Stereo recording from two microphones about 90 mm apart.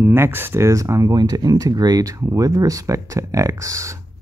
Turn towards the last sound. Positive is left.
turn(degrees=-35)  # may be behind; listen again after turning